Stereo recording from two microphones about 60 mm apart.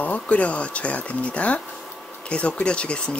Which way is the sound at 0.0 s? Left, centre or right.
Left.